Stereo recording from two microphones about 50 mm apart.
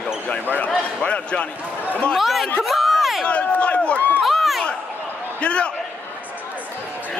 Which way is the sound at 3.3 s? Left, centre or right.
Left.